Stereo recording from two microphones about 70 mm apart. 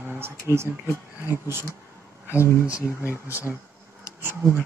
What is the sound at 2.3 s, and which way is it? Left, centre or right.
Speech, left.